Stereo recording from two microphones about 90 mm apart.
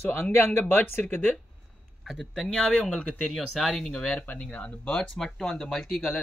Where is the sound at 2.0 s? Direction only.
5° left (ahead or behind).